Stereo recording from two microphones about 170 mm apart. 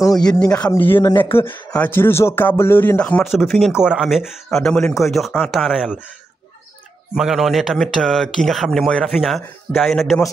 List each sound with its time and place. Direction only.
0.1 s speech: 5° left (ahead or behind)
0.4 s speech: 20° left (ahead or behind); by 5.9 s 5° right (ahead or behind)
7.2 s speech: centre (ahead or behind)